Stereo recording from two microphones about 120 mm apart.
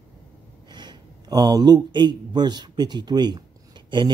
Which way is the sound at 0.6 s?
40° right (ahead or behind).